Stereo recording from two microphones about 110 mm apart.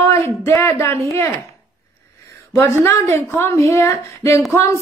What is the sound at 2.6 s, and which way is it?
A woman's voice, 25° left (ahead or behind).